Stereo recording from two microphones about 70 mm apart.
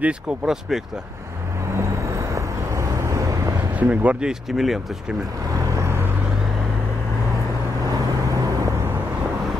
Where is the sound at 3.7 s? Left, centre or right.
Right.